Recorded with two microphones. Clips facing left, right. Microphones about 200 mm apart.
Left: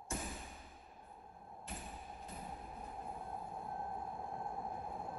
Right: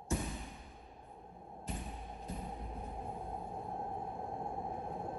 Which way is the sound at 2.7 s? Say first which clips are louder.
Right 4 dB; 25° right (ahead or behind).